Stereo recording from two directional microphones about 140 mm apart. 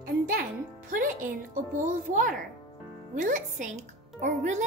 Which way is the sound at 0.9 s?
75° right (ahead or behind).